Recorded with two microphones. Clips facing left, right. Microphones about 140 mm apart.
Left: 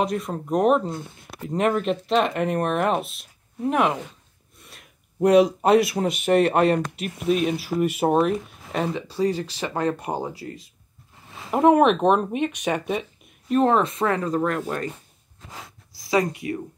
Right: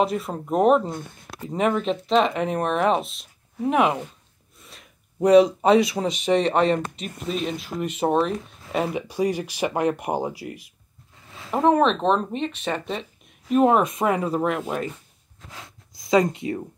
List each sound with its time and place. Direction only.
0.0 s speech: 5° right (ahead or behind)
4.6 s a sound: centre (ahead or behind)
5.9 s speech: 5° left (ahead or behind)
8.9 s speech: 15° right (ahead or behind)
11.5 s speech: 10° left (ahead or behind)
13.5 s speech: 10° right (ahead or behind)
15.9 s speech: 20° right (ahead or behind)